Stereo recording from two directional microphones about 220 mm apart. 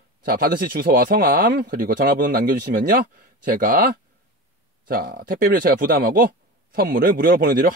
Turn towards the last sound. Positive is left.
turn(degrees=-45)  # may be behind; listen again after turning